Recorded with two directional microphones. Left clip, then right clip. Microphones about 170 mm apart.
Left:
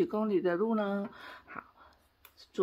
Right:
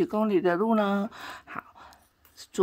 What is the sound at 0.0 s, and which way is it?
Speech, 30° right (ahead or behind).